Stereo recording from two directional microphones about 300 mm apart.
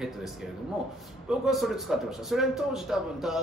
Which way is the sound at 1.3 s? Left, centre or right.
Centre.